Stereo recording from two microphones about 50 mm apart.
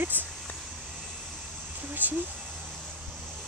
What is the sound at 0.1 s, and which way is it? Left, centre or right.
Speech, right.